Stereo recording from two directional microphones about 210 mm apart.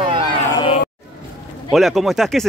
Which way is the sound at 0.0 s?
25° right (ahead or behind).